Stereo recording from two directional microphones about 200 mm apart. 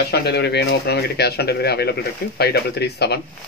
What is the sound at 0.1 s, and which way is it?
Speech, 55° left (ahead or behind).